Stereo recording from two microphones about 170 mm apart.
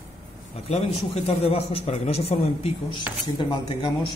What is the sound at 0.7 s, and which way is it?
A man's voice, 35° left (ahead or behind).